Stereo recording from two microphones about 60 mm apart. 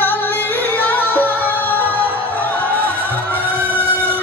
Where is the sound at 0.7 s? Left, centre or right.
Left.